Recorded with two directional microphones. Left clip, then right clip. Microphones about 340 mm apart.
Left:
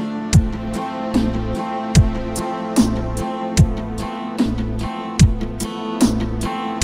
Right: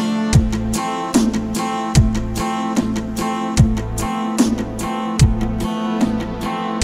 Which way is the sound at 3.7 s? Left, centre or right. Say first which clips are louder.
Right 3 dB; right.